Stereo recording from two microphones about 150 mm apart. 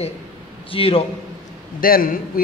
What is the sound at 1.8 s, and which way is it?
Speech, 70° left (ahead or behind).